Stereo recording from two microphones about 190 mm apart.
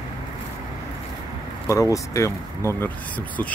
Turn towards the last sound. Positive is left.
turn(degrees=10)  # may be behind; listen again after turning